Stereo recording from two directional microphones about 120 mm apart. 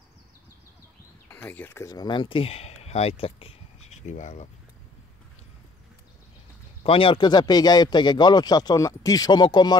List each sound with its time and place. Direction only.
1.3 s speech: 15° left (ahead or behind)
1.9 s speech: 35° left (ahead or behind); by 4.5 s 75° left (ahead or behind)
6.8 s a man's voice: 50° left (ahead or behind)